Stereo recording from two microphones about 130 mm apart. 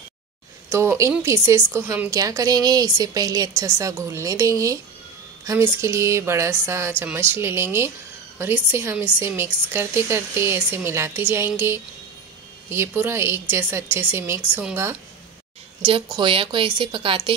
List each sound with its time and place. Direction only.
0.7 s a woman's voice: 20° right (ahead or behind)
15.8 s a woman's voice: 40° right (ahead or behind)